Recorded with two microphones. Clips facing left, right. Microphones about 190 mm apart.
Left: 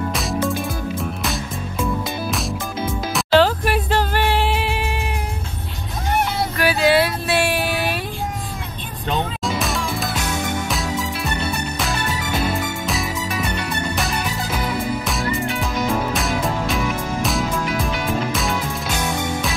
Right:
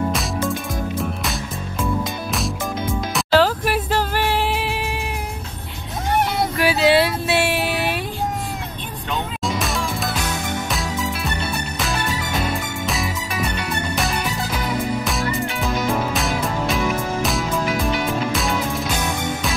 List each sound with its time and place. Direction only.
1.2 s music: centre (ahead or behind)
3.2 s music: 5° right (ahead or behind)
6.6 s a sound: 25° right (ahead or behind)
9.4 s music: centre (ahead or behind)
12.8 s music: centre (ahead or behind)